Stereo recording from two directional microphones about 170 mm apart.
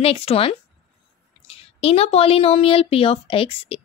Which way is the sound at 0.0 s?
35° left (ahead or behind).